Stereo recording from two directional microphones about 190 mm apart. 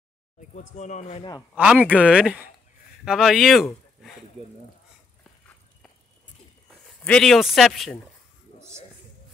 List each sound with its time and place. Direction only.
0.4 s speech: 40° left (ahead or behind)
1.5 s speech: 5° right (ahead or behind)
6.7 s speech: 5° left (ahead or behind)
8.5 s a sound: 15° right (ahead or behind)